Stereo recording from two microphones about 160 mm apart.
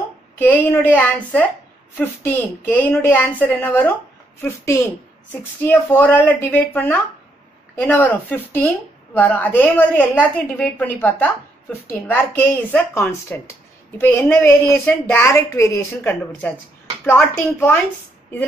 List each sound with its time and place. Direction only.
0.4 s a woman's voice: 15° left (ahead or behind)